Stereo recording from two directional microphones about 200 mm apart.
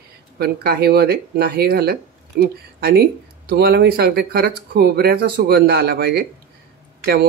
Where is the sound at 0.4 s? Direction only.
50° right (ahead or behind).